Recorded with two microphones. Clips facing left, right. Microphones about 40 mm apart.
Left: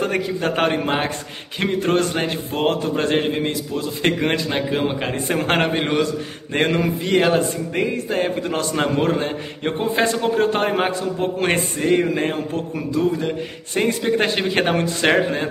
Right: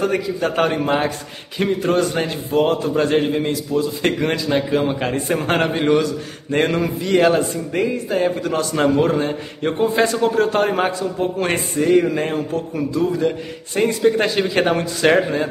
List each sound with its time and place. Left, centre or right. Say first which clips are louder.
0.0 s a man's voice: right 2 dB; left
1.6 s a man's voice: right 1 dB; left
6.5 s a man's voice: right 1 dB; left